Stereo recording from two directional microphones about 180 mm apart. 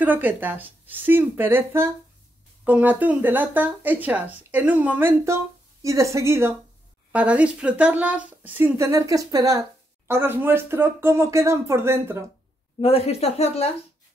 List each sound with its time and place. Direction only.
0.0 s speech: 10° right (ahead or behind)
12.8 s speech: 35° left (ahead or behind)